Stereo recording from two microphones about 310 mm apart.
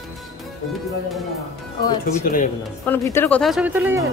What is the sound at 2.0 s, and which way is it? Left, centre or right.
Speech, left.